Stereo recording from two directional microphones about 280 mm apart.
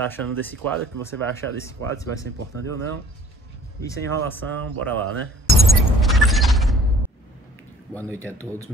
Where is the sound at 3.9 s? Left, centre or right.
Centre.